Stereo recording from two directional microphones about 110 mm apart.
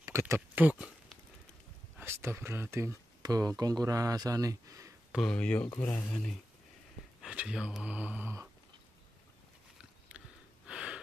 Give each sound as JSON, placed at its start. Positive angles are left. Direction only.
{"t": 0.0, "sound": "speech", "side_deg": -25}
{"t": 2.0, "sound": "speech", "side_deg": -25}
{"t": 3.2, "sound": "speech", "side_deg": -35}
{"t": 5.1, "sound": "speech", "side_deg": 10}
{"t": 7.2, "sound": "speech", "side_deg": -10}
{"t": 10.7, "sound": "a sound", "side_deg": -10}